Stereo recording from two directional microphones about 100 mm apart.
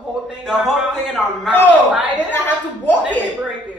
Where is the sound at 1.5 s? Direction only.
20° left (ahead or behind).